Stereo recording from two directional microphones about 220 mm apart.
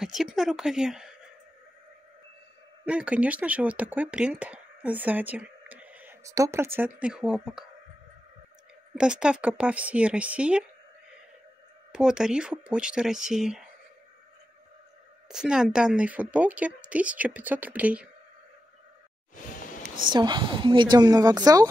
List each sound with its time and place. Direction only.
0.0 s a woman's voice: centre (ahead or behind)
2.8 s speech: 5° right (ahead or behind)
8.9 s speech: 5° right (ahead or behind)
11.9 s speech: 5° right (ahead or behind)
15.2 s speech: 5° right (ahead or behind)
20.1 s a woman's voice: 20° right (ahead or behind)